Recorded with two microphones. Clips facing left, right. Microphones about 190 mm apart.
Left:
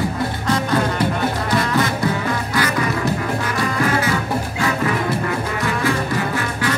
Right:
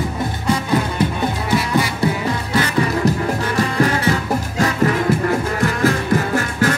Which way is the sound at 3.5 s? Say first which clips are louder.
Right 2 dB; 40° right (ahead or behind).